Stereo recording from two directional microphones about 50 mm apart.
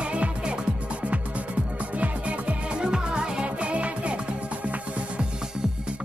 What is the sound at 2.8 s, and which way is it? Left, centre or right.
Music, centre.